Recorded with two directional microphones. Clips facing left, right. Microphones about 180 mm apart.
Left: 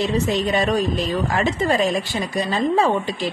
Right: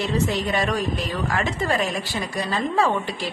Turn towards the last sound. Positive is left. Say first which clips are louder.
# left 3 dB
turn(degrees=20)  # may be behind; listen again after turning